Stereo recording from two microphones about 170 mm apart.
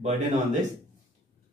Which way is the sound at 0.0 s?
45° right (ahead or behind).